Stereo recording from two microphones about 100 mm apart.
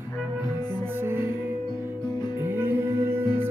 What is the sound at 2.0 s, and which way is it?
Music, 45° left (ahead or behind).